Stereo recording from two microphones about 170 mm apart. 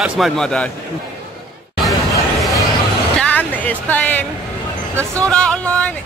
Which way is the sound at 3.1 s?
10° left (ahead or behind).